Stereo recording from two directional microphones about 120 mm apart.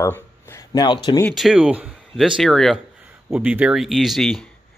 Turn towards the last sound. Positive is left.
turn(degrees=0)  # may be behind; listen again after turning